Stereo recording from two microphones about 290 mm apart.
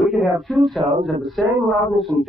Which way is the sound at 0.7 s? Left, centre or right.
Right.